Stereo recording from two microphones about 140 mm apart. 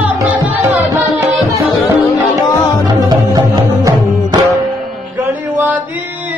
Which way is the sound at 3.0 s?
30° right (ahead or behind).